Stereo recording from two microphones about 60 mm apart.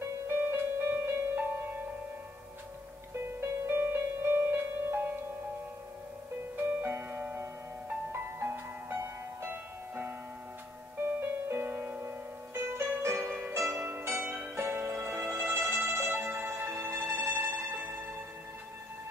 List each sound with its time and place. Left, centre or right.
0.3 s music: right
3.2 s music: right
6.5 s music: right
13.3 s music: right
13.6 s music: right
17.5 s music: right